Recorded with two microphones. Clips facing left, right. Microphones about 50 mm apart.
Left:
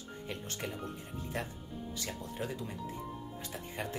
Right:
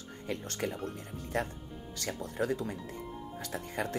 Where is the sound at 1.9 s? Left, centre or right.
Right.